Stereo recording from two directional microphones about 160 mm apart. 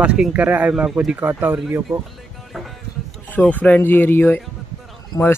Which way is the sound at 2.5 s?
Centre (ahead or behind).